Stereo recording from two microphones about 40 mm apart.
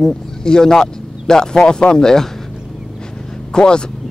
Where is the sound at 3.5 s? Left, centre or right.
Left.